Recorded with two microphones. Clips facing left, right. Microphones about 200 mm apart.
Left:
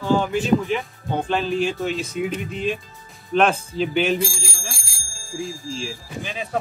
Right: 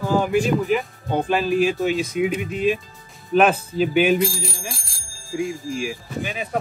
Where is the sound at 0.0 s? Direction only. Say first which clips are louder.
Right 1 dB; 5° right (ahead or behind).